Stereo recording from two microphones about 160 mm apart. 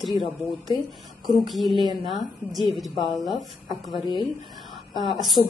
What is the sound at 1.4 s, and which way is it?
A woman's voice, centre (ahead or behind).